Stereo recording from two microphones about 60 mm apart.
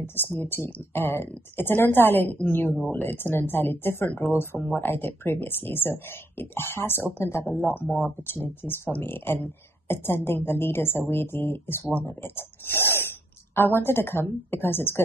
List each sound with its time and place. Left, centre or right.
0.0 s speech: left